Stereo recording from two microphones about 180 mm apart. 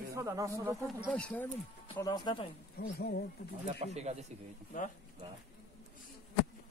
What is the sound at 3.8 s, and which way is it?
Speech, 40° right (ahead or behind).